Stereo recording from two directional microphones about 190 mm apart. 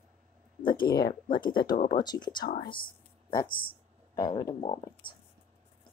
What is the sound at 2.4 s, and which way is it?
Speech, 50° left (ahead or behind).